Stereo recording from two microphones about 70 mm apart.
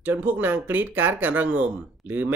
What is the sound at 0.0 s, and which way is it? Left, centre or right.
Speech, right.